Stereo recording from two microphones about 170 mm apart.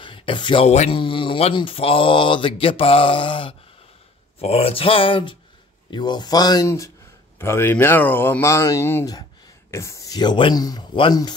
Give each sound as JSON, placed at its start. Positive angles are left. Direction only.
{"t": 0.0, "sound": "speech", "side_deg": 30}